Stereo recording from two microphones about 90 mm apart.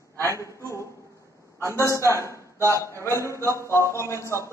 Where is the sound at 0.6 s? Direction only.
35° left (ahead or behind).